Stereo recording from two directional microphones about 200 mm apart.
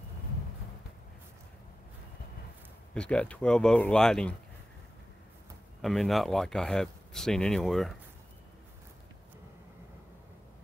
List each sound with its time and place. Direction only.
2.9 s speech: 5° left (ahead or behind)
5.8 s speech: centre (ahead or behind)